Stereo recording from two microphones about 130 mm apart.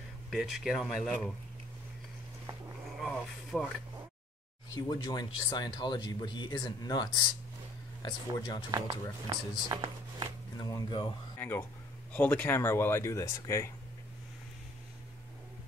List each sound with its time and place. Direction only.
0.3 s speech: centre (ahead or behind)
3.0 s a sound: 5° left (ahead or behind)
4.7 s speech: 30° left (ahead or behind)
8.7 s speech: 30° right (ahead or behind)
10.6 s speech: 35° left (ahead or behind)
11.3 s speech: 15° left (ahead or behind)